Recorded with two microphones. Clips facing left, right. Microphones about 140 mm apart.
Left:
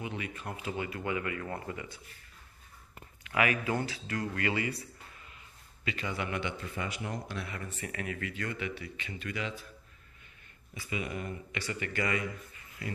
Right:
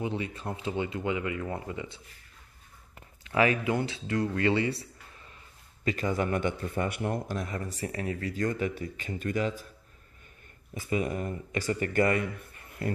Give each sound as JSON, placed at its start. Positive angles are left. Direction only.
{"t": 0.0, "sound": "speech", "side_deg": -30}
{"t": 3.3, "sound": "speech", "side_deg": -30}
{"t": 5.9, "sound": "a man's voice", "side_deg": -40}
{"t": 10.7, "sound": "a man's voice", "side_deg": -45}